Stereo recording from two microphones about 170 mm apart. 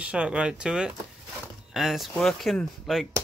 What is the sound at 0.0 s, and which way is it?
Speech, 5° right (ahead or behind).